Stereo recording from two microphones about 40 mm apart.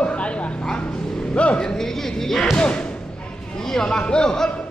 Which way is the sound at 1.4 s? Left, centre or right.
Left.